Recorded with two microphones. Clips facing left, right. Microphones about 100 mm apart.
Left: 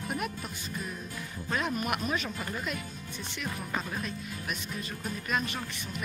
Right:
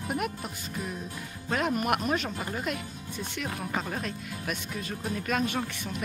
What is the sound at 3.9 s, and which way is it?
Speech, 75° right (ahead or behind).